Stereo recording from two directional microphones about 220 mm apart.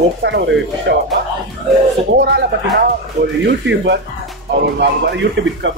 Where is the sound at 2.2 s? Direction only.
50° right (ahead or behind).